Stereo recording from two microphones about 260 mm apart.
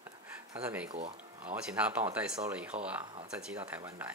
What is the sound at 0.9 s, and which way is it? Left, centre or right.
Speech, right.